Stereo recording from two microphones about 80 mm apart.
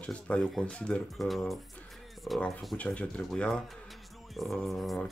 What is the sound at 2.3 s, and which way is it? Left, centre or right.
Speech, centre.